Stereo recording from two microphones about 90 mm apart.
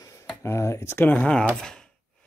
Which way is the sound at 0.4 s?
30° left (ahead or behind).